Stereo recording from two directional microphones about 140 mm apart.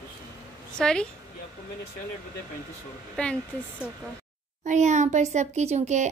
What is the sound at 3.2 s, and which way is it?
Speech, 10° left (ahead or behind).